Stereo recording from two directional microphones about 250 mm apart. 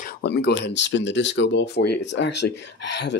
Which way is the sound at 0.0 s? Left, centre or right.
Left.